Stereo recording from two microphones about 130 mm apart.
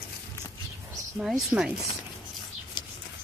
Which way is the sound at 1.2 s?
5° right (ahead or behind).